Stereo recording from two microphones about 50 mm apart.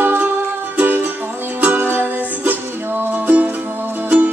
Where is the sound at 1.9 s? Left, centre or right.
Right.